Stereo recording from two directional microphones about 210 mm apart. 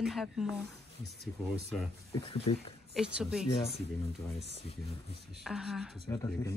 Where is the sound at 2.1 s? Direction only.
25° left (ahead or behind).